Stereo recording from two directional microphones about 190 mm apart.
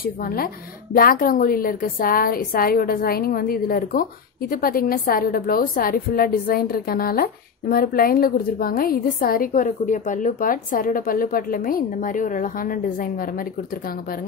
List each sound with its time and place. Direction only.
0.0 s a woman's voice: 50° left (ahead or behind)